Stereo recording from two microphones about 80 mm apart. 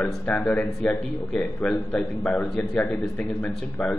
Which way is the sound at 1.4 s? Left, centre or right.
Centre.